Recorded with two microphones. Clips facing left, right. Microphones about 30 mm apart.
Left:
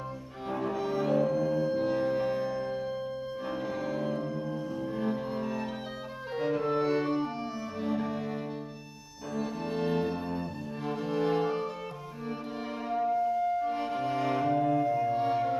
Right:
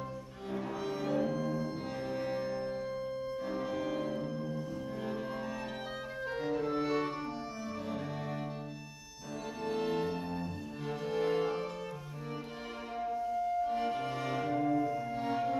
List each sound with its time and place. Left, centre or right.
0.5 s cello: centre
0.7 s music: centre
1.8 s music: centre
2.3 s music: centre
2.6 s music: centre
6.3 s music: left
13.1 s music: left
14.1 s music: left